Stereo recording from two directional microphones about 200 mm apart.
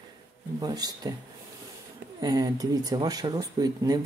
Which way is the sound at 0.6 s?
20° right (ahead or behind).